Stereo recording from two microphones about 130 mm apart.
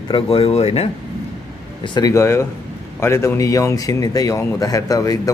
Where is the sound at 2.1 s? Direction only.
20° left (ahead or behind).